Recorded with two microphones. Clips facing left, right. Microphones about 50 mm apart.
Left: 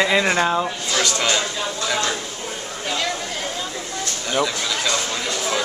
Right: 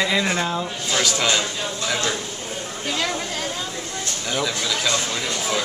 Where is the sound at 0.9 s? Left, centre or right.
Centre.